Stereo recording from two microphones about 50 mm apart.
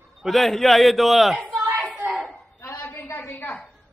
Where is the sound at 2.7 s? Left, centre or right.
Left.